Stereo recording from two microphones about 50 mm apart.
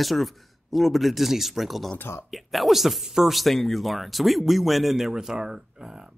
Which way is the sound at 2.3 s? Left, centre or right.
Centre.